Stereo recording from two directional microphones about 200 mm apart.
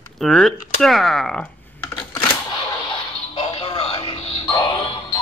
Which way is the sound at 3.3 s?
25° left (ahead or behind).